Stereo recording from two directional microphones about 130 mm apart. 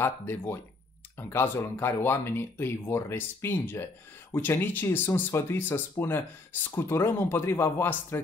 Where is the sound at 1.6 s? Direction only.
20° left (ahead or behind).